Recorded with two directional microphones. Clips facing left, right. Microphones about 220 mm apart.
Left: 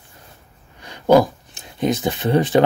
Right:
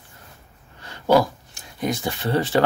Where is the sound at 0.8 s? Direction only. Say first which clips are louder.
Left 4 dB; 15° left (ahead or behind).